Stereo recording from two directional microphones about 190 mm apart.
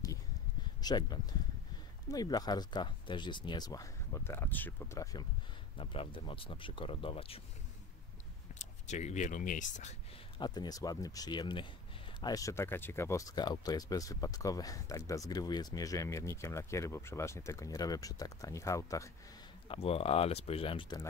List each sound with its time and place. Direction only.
0.8 s speech: 20° left (ahead or behind)
5.8 s speech: 25° left (ahead or behind)
8.5 s speech: 40° left (ahead or behind)
10.4 s speech: 20° left (ahead or behind)
19.7 s speech: 30° left (ahead or behind)